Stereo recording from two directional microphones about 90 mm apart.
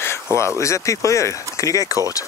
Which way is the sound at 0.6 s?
35° left (ahead or behind).